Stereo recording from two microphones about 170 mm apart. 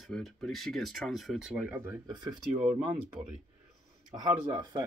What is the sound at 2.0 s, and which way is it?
Speech, 25° right (ahead or behind).